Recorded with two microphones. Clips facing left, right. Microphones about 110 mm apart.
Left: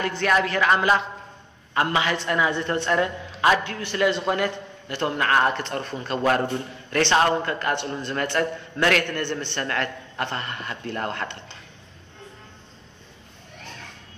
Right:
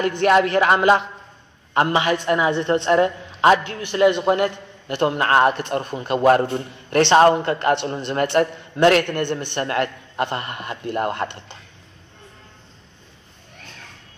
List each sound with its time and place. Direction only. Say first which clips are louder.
0.0 s a woman's voice: right 6 dB; 20° right (ahead or behind)
5.4 s a man's voice: right 5 dB; 15° right (ahead or behind)
9.0 s a woman's voice: right 4 dB; 15° right (ahead or behind)